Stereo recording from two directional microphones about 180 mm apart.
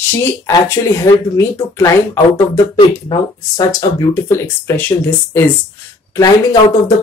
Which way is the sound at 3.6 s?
20° left (ahead or behind).